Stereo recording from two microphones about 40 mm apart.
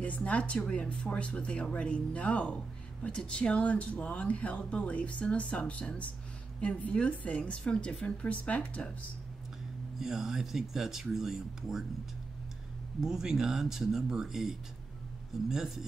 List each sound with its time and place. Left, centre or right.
0.0 s speech: left
9.9 s speech: centre
13.0 s speech: centre